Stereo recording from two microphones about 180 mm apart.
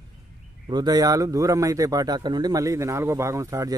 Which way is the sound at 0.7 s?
20° right (ahead or behind).